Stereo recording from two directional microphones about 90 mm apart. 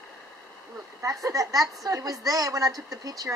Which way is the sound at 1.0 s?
35° right (ahead or behind).